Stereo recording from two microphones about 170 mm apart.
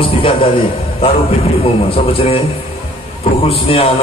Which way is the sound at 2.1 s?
35° left (ahead or behind).